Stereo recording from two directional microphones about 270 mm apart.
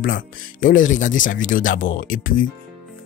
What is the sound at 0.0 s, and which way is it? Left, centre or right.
Speech, left.